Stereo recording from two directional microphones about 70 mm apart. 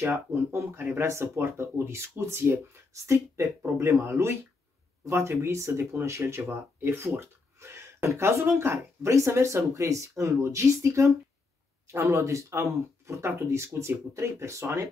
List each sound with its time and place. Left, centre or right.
0.0 s speech: right